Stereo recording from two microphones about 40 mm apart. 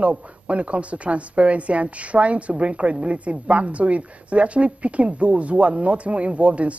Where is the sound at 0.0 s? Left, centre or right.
Right.